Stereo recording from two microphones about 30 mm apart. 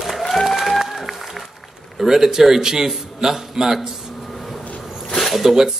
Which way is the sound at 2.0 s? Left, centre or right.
Centre.